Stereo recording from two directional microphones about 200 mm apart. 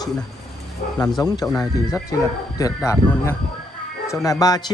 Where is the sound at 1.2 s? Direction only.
20° left (ahead or behind).